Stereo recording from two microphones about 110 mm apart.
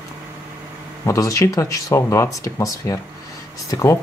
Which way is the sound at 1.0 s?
30° left (ahead or behind).